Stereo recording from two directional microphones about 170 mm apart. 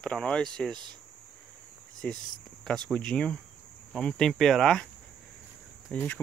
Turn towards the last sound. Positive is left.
turn(degrees=10)  # may be behind; listen again after turning